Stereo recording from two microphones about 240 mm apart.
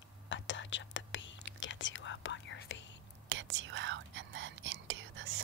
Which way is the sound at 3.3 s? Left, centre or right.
Right.